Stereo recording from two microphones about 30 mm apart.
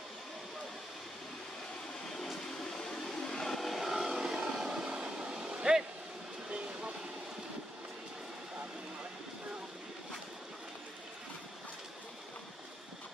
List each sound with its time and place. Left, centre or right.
3.2 s vehicle: centre
3.6 s vehicle: centre
4.2 s a sound: centre
5.2 s vehicle: right